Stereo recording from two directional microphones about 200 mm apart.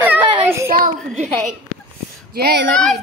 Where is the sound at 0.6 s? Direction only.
45° right (ahead or behind).